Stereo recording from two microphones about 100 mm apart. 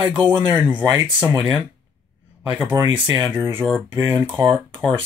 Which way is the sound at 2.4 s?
20° right (ahead or behind).